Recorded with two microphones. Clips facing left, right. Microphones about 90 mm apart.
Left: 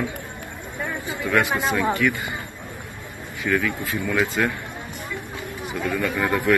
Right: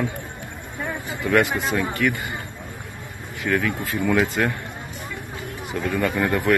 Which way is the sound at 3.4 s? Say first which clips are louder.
Even; 15° right (ahead or behind).